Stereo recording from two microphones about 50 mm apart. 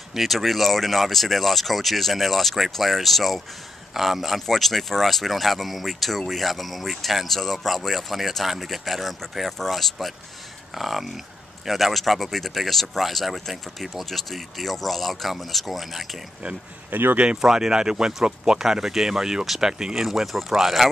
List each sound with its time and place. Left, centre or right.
0.1 s speech: centre
16.9 s speech: right
17.4 s speech: centre